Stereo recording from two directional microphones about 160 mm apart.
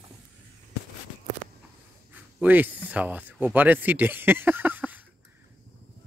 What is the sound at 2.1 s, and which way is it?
Speech, 10° right (ahead or behind).